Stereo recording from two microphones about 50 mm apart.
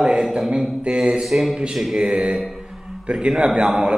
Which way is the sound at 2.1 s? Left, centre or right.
Centre.